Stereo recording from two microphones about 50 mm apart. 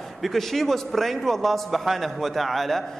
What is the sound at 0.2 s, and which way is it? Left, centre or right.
A man's voice, centre.